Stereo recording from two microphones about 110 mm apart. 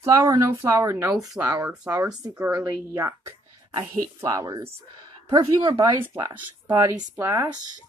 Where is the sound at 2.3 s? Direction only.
10° right (ahead or behind).